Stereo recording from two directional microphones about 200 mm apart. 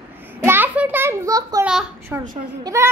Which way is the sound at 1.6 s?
5° right (ahead or behind).